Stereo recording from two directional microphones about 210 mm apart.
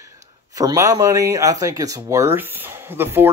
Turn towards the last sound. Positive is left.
turn(degrees=-10)  # may be behind; listen again after turning